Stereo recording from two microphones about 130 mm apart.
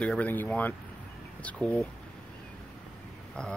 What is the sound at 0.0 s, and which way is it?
Speech, 10° left (ahead or behind).